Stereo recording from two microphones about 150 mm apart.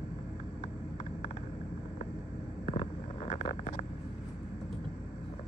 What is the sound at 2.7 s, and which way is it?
Vehicle, 45° left (ahead or behind).